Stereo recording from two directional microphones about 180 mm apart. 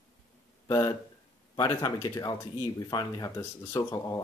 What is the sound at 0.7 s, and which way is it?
Speech, 15° left (ahead or behind).